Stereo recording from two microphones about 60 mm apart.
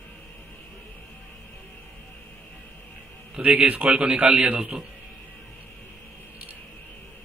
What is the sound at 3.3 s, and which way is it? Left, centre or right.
A man's voice, centre.